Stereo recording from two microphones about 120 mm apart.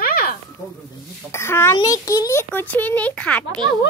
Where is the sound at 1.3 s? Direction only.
20° left (ahead or behind).